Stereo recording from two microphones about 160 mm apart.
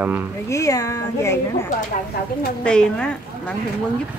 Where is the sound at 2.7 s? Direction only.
5° left (ahead or behind).